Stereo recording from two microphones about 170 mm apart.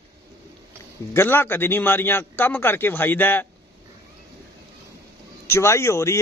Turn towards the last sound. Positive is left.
turn(degrees=15)  # may be behind; listen again after turning